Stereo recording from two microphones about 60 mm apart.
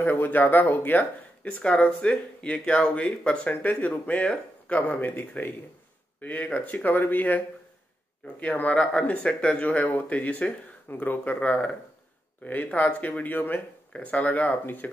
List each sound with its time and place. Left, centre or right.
0.0 s speech: left